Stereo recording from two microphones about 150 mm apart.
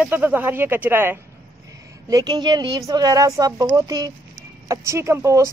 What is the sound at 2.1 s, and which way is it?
Speech, 30° right (ahead or behind).